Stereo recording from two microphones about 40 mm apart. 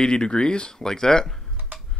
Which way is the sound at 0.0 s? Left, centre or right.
Left.